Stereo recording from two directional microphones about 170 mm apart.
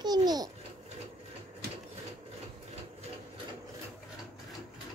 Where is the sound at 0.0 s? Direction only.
25° right (ahead or behind).